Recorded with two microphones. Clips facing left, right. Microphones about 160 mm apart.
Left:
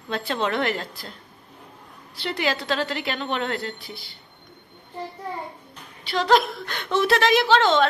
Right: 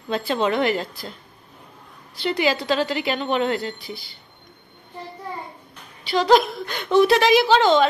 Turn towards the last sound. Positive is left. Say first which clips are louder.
# right 2 dB
turn(degrees=-5)  # may be behind; listen again after turning